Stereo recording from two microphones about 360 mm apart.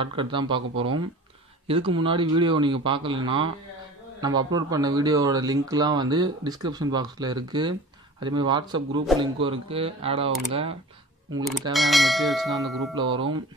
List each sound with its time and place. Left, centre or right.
0.0 s speech: centre
11.7 s bell: centre
12.9 s speech: centre